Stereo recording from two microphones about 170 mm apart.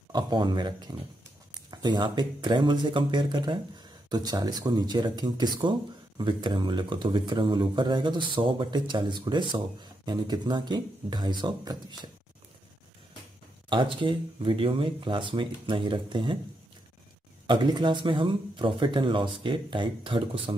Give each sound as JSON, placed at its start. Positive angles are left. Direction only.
{"t": 0.1, "sound": "speech", "side_deg": -25}
{"t": 13.7, "sound": "speech", "side_deg": -30}
{"t": 17.5, "sound": "speech", "side_deg": -30}